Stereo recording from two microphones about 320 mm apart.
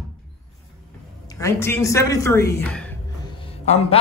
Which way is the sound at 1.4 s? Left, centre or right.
Centre.